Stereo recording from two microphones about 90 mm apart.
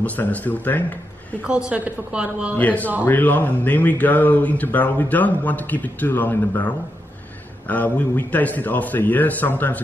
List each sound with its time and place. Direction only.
0.0 s a man's voice: 15° left (ahead or behind)
1.4 s a woman's voice: 15° right (ahead or behind)
2.5 s speech: 15° left (ahead or behind)